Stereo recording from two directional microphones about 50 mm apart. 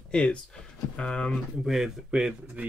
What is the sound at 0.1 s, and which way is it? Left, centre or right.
Speech, left.